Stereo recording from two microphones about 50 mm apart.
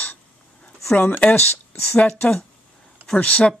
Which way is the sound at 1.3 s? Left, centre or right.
Left.